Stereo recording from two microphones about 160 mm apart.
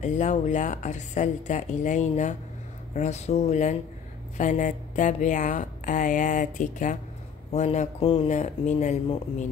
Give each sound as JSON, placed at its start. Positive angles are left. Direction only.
{"t": 0.0, "sound": "a woman's voice", "side_deg": 50}